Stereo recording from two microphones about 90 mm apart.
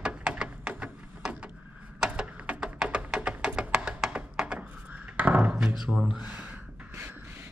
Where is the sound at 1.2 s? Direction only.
10° right (ahead or behind).